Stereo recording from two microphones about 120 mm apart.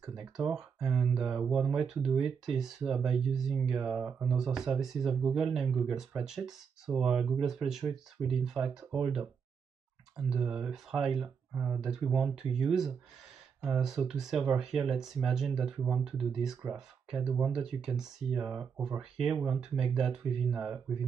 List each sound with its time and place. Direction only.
0.0 s speech: 5° right (ahead or behind)
11.5 s speech: 20° right (ahead or behind)
12.1 s speech: 5° right (ahead or behind)